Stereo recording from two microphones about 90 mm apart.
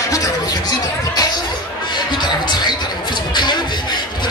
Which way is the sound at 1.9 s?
55° left (ahead or behind).